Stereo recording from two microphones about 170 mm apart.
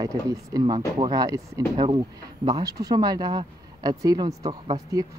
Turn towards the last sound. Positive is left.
turn(degrees=-20)  # may be behind; listen again after turning